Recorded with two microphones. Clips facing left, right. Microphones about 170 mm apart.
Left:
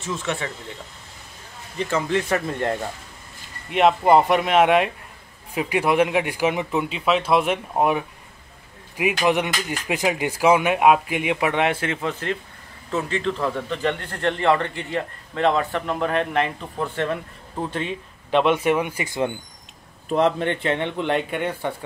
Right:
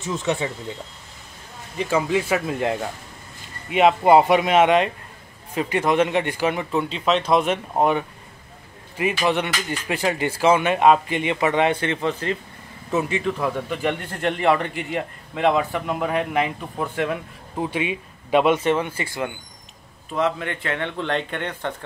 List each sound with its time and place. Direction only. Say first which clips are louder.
0.0 s speech: right 3 dB; 15° right (ahead or behind)
1.8 s speech: right 1 dB; 10° right (ahead or behind)
12.9 s speech: right 1 dB; 15° right (ahead or behind)
18.6 s speech: even; 10° left (ahead or behind)
20.1 s speech: left 4 dB; 35° left (ahead or behind); by 21.7 s 10° left (ahead or behind)